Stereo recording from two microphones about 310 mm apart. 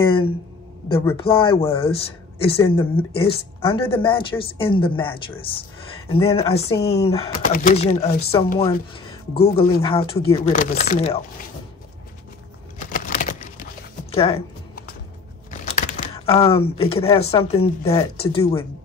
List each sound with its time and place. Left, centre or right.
0.8 s speech: centre
9.8 s speech: centre
12.9 s a sound: left
14.1 s speech: centre
15.6 s typing: left
16.7 s speech: centre